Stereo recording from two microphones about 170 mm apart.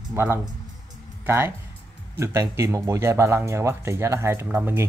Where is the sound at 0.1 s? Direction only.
15° right (ahead or behind).